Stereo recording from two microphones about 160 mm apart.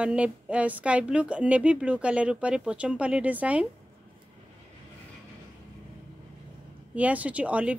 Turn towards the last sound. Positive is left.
turn(degrees=-10)  # may be behind; listen again after turning